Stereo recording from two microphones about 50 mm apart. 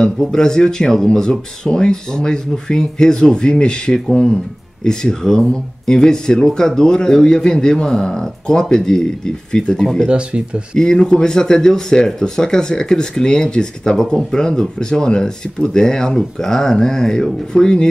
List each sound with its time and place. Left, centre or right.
0.0 s speech: centre
10.0 s speech: right
10.8 s speech: centre